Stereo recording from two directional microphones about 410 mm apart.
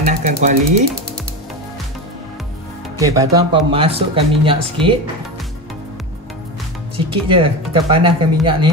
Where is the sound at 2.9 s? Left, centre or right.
Centre.